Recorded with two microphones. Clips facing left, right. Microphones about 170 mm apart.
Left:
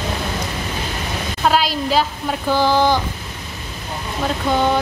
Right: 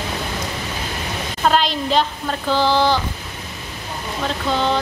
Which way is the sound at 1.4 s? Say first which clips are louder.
Even; 5° left (ahead or behind).